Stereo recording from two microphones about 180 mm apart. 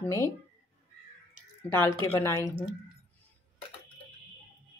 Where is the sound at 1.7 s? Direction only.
10° left (ahead or behind).